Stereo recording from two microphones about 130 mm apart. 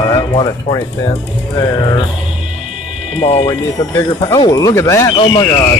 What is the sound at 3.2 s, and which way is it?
Speech, 50° left (ahead or behind).